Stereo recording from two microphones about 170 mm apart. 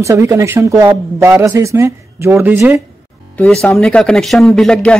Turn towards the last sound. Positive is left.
turn(degrees=5)  # may be behind; listen again after turning